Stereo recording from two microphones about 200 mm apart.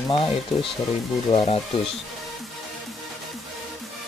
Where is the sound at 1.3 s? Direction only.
30° left (ahead or behind).